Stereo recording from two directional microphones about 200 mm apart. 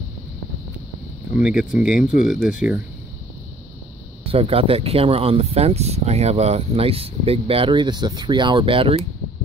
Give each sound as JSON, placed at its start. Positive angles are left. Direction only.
{"t": 1.4, "sound": "speech", "side_deg": -5}
{"t": 4.3, "sound": "speech", "side_deg": -30}